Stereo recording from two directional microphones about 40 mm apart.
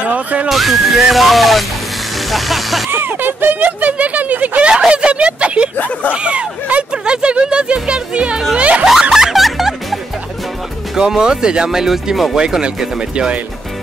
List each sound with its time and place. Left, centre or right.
0.0 s speech: right
0.5 s music: centre
2.1 s speech: centre
3.1 s speech: right
3.6 s speech: right
4.6 s speech: right
9.1 s music: centre
11.0 s speech: centre